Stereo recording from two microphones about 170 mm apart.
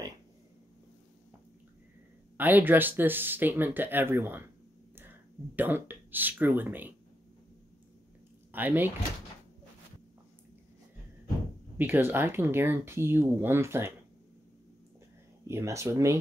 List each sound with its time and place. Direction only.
2.3 s speech: 10° right (ahead or behind)
5.6 s speech: 10° right (ahead or behind)
8.5 s speech: 10° right (ahead or behind)
11.8 s speech: 10° right (ahead or behind)
15.4 s speech: 15° right (ahead or behind)